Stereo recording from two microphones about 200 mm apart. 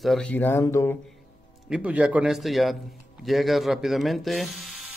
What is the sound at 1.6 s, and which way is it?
A man's voice, 5° right (ahead or behind).